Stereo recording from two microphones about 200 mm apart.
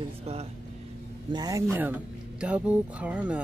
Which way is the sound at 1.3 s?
15° right (ahead or behind).